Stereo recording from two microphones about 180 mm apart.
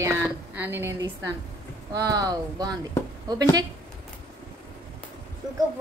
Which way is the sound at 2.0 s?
20° right (ahead or behind).